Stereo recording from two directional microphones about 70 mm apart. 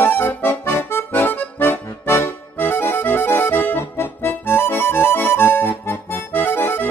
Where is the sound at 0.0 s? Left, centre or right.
Left.